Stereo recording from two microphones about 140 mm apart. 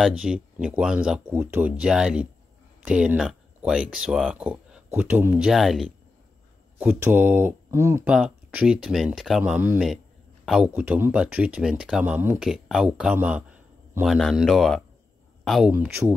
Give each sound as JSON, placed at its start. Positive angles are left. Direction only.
{"t": 0.0, "sound": "speech", "side_deg": -5}
{"t": 6.8, "sound": "speech", "side_deg": -15}
{"t": 8.1, "sound": "speech", "side_deg": -5}
{"t": 9.4, "sound": "a man's voice", "side_deg": -10}
{"t": 10.7, "sound": "speech", "side_deg": -15}
{"t": 12.4, "sound": "speech", "side_deg": -5}
{"t": 15.7, "sound": "speech", "side_deg": -15}